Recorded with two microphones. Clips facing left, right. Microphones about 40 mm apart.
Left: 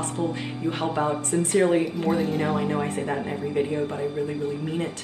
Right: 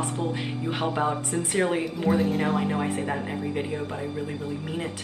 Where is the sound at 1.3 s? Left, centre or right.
Right.